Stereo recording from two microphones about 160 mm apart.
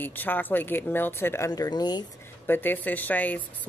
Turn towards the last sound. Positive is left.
turn(degrees=10)  # may be behind; listen again after turning